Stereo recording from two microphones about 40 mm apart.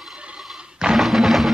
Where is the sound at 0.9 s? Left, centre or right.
Centre.